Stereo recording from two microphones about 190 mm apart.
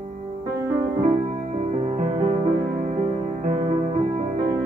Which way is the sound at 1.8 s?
35° right (ahead or behind).